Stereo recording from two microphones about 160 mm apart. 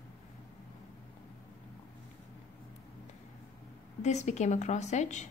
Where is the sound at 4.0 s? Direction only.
45° left (ahead or behind).